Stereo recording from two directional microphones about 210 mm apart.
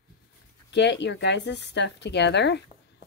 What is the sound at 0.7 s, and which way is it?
Speech, 55° left (ahead or behind).